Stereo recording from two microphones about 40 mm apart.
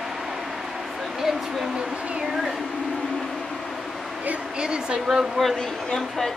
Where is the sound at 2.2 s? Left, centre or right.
Centre.